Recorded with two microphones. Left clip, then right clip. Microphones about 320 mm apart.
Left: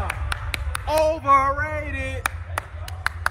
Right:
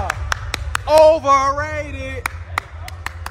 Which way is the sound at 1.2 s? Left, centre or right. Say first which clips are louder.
Right 3 dB; centre.